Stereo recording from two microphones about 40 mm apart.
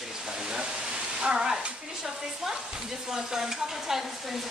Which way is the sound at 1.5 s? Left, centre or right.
Centre.